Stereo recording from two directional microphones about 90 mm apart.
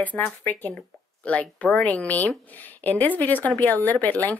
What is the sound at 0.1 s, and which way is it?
Speech, 10° left (ahead or behind).